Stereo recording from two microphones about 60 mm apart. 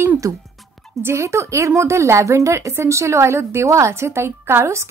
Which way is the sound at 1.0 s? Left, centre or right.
Right.